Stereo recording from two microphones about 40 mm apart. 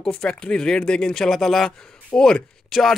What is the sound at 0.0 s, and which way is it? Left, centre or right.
Speech, left.